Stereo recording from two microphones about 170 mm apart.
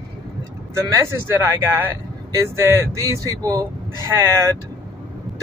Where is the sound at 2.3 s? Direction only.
15° right (ahead or behind).